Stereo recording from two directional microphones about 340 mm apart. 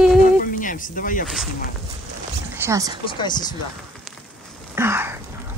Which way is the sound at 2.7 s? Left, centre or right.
Centre.